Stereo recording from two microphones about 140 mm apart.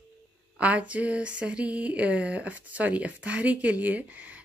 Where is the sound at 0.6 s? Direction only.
10° right (ahead or behind).